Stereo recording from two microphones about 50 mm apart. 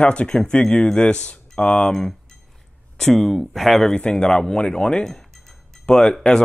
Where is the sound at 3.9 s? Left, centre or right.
Centre.